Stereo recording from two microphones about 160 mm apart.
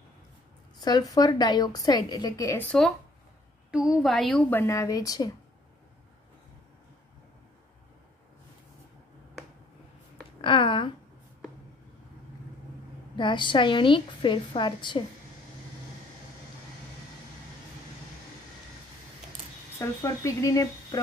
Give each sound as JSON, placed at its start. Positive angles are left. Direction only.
{"t": 0.7, "sound": "a woman's voice", "side_deg": 25}
{"t": 3.7, "sound": "speech", "side_deg": -5}
{"t": 10.4, "sound": "a sound", "side_deg": 30}
{"t": 13.1, "sound": "a woman's voice", "side_deg": 30}
{"t": 19.8, "sound": "a woman's voice", "side_deg": 20}